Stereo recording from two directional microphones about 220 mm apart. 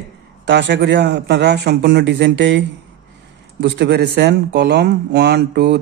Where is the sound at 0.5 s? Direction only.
50° right (ahead or behind).